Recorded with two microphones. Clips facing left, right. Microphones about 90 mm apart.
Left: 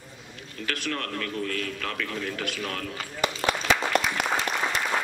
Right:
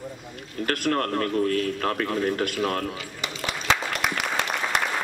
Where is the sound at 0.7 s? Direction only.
45° right (ahead or behind).